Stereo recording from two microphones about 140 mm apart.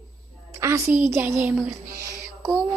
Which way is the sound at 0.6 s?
20° right (ahead or behind).